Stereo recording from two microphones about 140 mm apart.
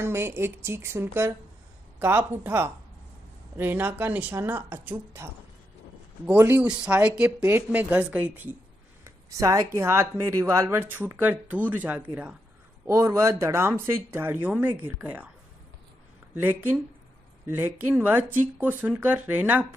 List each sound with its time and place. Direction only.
0.0 s speech: 15° right (ahead or behind)
9.0 s speech: 20° right (ahead or behind)
16.3 s speech: 15° right (ahead or behind)